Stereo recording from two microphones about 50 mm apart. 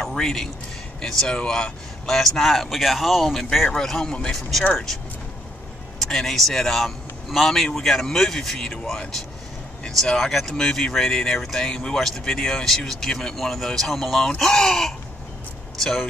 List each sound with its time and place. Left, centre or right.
0.0 s a man's voice: centre
3.7 s speech: centre
5.9 s speech: centre